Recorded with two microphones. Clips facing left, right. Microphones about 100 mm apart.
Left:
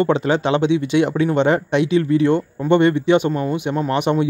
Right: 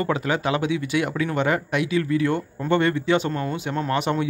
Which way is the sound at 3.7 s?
20° left (ahead or behind).